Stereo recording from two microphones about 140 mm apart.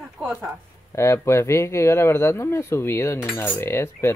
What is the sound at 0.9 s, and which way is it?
Cutlery, 20° left (ahead or behind).